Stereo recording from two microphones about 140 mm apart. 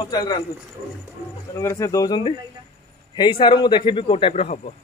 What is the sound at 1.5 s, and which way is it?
A man's voice, 20° left (ahead or behind).